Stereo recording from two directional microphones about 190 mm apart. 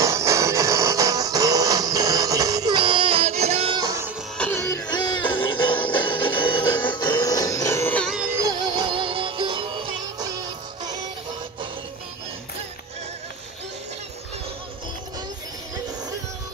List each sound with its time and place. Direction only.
0.0 s music: 15° right (ahead or behind)
4.4 s music: 10° left (ahead or behind)
8.1 s music: 10° right (ahead or behind)